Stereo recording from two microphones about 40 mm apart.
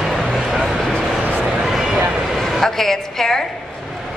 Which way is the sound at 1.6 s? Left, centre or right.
Centre.